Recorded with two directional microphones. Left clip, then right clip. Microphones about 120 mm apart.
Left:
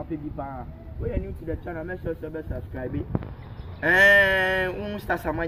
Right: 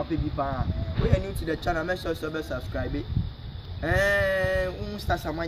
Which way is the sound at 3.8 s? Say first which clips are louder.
Left 7 dB; 10° right (ahead or behind).